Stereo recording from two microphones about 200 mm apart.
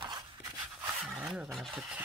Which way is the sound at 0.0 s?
20° right (ahead or behind).